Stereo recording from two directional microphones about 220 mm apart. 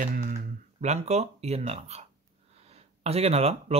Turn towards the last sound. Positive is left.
turn(degrees=-30)  # may be behind; listen again after turning